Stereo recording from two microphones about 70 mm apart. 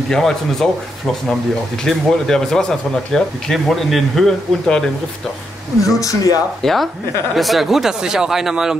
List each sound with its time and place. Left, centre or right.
0.1 s speech: centre
5.9 s speech: left
6.6 s speech: centre